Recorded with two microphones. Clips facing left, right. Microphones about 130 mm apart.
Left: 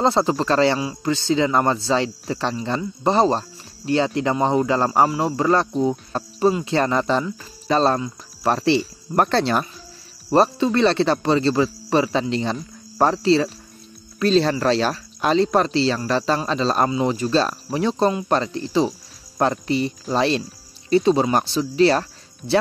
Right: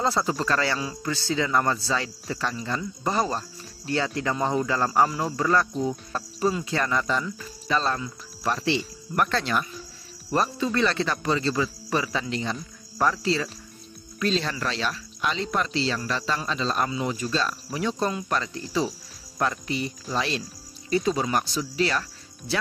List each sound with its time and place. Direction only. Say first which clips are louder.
0.0 s speech: left 6 dB; 25° left (ahead or behind)
19.3 s speech: left 7 dB; 35° left (ahead or behind)